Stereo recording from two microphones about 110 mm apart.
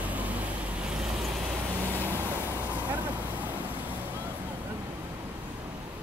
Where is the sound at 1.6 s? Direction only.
20° right (ahead or behind).